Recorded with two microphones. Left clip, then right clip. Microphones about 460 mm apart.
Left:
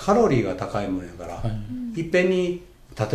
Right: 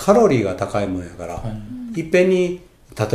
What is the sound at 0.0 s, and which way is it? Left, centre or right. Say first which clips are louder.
Speech: right 5 dB; right.